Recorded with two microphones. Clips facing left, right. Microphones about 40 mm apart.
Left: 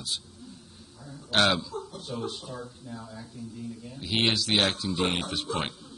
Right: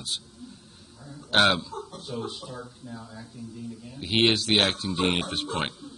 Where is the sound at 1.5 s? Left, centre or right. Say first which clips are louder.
Right 1 dB; right.